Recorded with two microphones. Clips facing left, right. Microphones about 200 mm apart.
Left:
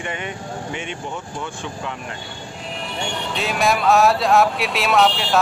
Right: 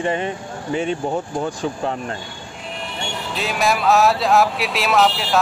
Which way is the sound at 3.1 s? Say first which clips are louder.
Even; centre (ahead or behind).